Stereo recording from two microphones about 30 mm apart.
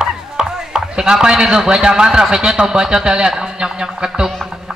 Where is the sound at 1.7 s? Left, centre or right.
Right.